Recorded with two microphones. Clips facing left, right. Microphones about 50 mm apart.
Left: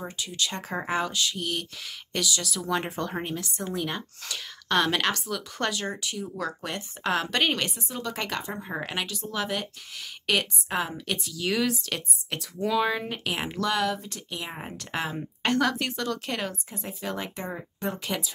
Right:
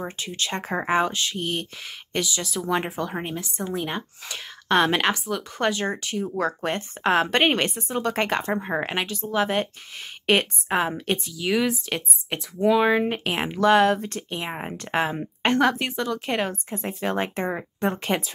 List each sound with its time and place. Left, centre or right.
0.2 s speech: right
3.0 s speech: centre; by 11.3 s right
11.3 s speech: centre
11.8 s speech: right